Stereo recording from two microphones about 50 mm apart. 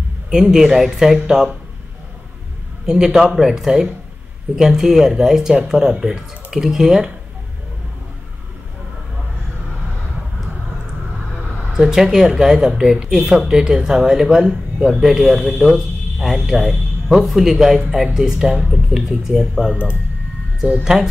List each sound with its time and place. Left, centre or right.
0.3 s speech: centre
2.9 s speech: centre
11.7 s speech: centre
15.5 s speech: right
16.4 s speech: centre
20.8 s speech: centre